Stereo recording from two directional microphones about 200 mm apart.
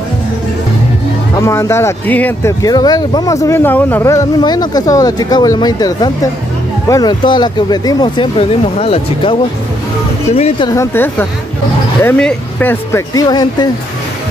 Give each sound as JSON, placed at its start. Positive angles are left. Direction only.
{"t": 1.3, "sound": "speech", "side_deg": 15}
{"t": 10.3, "sound": "speech", "side_deg": 30}
{"t": 10.7, "sound": "speech", "side_deg": 15}